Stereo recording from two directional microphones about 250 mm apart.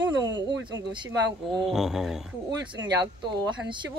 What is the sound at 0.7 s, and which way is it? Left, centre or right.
Speech, centre.